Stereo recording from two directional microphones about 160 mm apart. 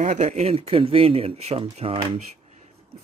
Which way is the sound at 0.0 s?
45° right (ahead or behind).